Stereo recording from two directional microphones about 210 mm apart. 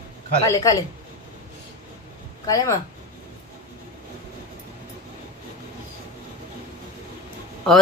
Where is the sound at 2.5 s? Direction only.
15° left (ahead or behind).